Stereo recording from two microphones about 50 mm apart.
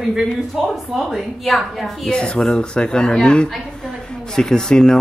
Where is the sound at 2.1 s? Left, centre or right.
Centre.